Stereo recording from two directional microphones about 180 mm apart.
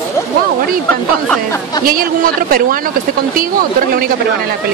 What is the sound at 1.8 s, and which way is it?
Speech, 55° right (ahead or behind).